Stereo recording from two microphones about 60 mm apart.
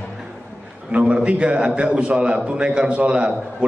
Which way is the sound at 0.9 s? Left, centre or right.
Right.